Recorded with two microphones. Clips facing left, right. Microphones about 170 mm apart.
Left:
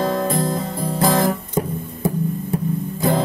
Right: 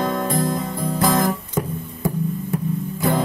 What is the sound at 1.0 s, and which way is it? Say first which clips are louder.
Guitar: left 1 dB; 30° left (ahead or behind).